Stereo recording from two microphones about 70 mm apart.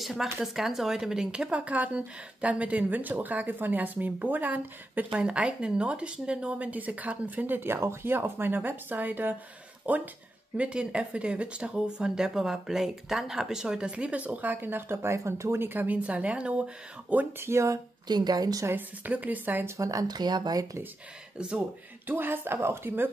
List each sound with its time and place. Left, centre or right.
0.0 s speech: centre
17.4 s speech: right
18.0 s speech: right
18.7 s speech: right
19.6 s speech: right
21.5 s speech: right